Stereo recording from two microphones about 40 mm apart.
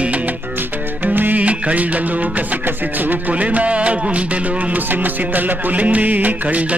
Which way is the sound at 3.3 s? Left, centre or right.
Right.